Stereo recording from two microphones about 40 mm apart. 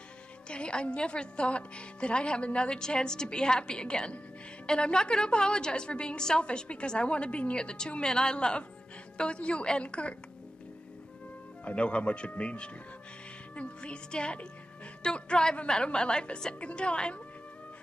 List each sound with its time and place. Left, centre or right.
0.5 s a woman's voice: left
11.6 s a woman's voice: left